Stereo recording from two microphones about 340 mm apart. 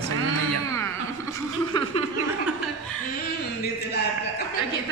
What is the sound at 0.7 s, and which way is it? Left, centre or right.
Speech, centre.